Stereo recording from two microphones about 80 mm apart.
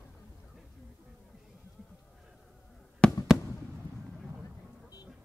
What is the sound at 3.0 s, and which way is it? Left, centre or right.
Fireworks, centre.